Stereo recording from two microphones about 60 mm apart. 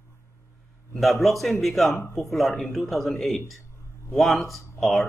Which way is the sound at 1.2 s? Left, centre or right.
Centre.